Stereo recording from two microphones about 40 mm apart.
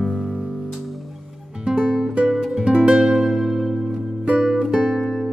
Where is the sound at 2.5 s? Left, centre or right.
Right.